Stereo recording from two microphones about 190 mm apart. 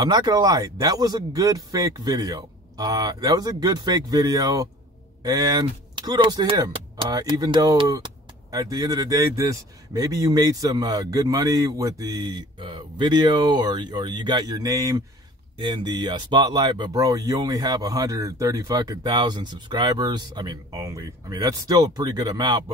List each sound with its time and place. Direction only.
0.0 s speech: 20° right (ahead or behind)